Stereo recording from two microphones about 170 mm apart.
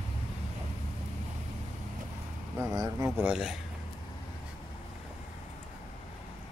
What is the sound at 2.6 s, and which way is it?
Speech, 20° right (ahead or behind).